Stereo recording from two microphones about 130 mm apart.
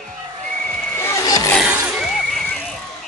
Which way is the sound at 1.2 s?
30° left (ahead or behind).